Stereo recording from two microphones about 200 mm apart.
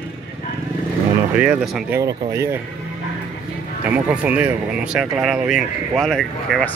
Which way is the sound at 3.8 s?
5° right (ahead or behind).